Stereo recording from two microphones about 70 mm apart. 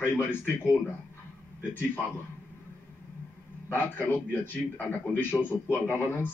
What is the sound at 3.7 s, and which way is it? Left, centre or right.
A man's voice, left.